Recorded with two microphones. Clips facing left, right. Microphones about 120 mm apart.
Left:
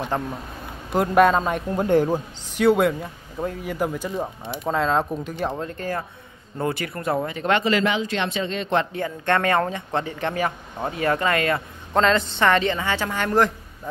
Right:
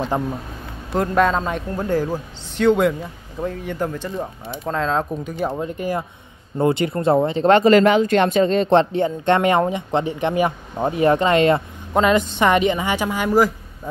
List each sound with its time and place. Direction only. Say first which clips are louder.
0.1 s a woman's voice: right 2 dB; 15° right (ahead or behind)
0.9 s speech: left 1 dB; 5° left (ahead or behind)
1.8 s speech: left 3 dB; 20° left (ahead or behind)
2.5 s speech: right 2 dB; 5° left (ahead or behind)
5.7 s a woman's voice: right 4 dB; 15° right (ahead or behind)
11.9 s a woman's voice: right 3 dB; 10° right (ahead or behind)